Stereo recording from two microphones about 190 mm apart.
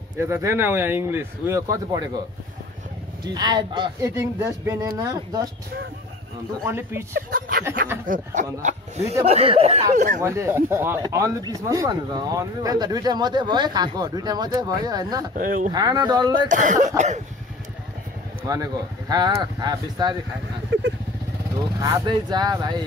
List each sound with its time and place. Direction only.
0.2 s speech: 15° right (ahead or behind)
3.3 s speech: 20° right (ahead or behind)
6.6 s speech: 15° right (ahead or behind)
7.2 s speech: 50° right (ahead or behind); by 9.8 s 30° right (ahead or behind)
9.9 s speech: 40° right (ahead or behind)
10.2 s speech: 15° right (ahead or behind)
15.3 s speech: 45° right (ahead or behind)
15.7 s speech: 20° right (ahead or behind)
16.4 s speech: 40° right (ahead or behind)
18.5 s speech: 20° right (ahead or behind)
21.7 s speech: 20° right (ahead or behind)